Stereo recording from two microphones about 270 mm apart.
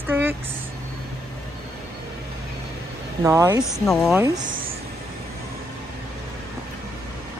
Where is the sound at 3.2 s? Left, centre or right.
Centre.